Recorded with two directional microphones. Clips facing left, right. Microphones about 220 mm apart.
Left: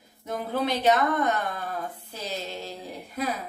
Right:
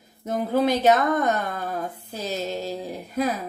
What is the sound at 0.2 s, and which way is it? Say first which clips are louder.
A woman's voice: right 6 dB; 45° right (ahead or behind).